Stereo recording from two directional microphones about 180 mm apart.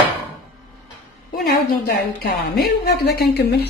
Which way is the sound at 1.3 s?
60° left (ahead or behind).